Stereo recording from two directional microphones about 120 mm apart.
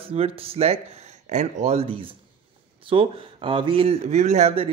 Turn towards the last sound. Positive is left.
turn(degrees=-60)  # may be behind; listen again after turning